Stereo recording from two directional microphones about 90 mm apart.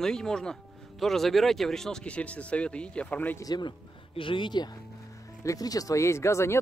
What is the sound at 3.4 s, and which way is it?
Speech, 50° left (ahead or behind).